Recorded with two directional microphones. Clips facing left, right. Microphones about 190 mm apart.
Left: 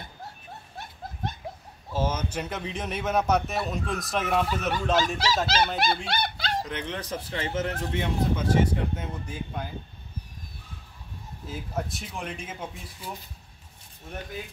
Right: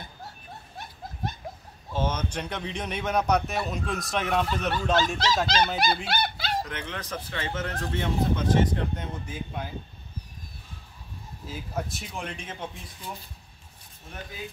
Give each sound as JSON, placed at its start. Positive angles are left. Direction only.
{"t": 1.9, "sound": "speech", "side_deg": 5}
{"t": 6.6, "sound": "speech", "side_deg": 20}
{"t": 11.4, "sound": "speech", "side_deg": 0}